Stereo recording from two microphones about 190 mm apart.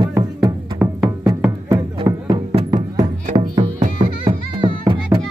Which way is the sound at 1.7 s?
20° right (ahead or behind).